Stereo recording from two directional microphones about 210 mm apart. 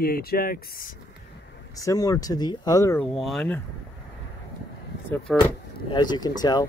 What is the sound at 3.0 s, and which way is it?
Speech, centre (ahead or behind).